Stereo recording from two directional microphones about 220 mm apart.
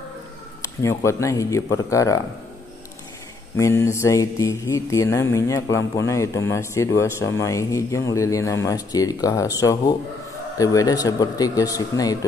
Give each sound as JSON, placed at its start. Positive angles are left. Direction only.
{"t": 0.6, "sound": "mantra", "side_deg": 15}
{"t": 3.5, "sound": "mantra", "side_deg": 15}